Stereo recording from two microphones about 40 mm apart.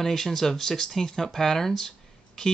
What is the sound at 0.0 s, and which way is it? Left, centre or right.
Speech, centre.